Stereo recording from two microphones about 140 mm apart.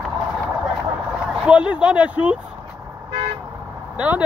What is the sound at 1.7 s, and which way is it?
Speech, 10° right (ahead or behind).